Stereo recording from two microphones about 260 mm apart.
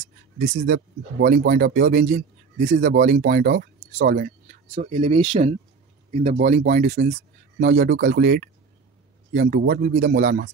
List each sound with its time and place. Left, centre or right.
0.4 s a man's voice: right